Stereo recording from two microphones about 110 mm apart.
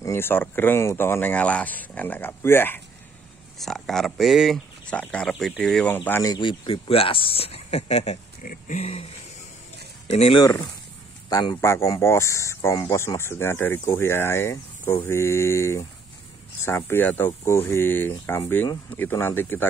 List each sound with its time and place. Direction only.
0.0 s speech: 25° left (ahead or behind)
3.5 s speech: centre (ahead or behind)
4.8 s speech: 10° left (ahead or behind)
5.9 s speech: 15° left (ahead or behind)
6.2 s speech: 45° left (ahead or behind); by 9.0 s 65° left (ahead or behind)
11.2 s speech: 35° left (ahead or behind)
11.6 s speech: 25° left (ahead or behind)